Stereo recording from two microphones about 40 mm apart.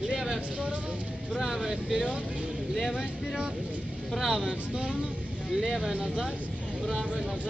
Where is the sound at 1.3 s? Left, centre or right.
Centre.